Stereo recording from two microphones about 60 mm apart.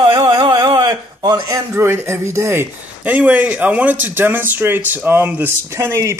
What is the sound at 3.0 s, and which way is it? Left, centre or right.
Speech, right.